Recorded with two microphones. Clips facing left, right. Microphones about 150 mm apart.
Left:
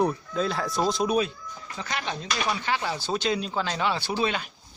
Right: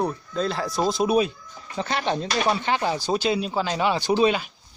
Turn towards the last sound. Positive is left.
turn(degrees=-20)  # may be behind; listen again after turning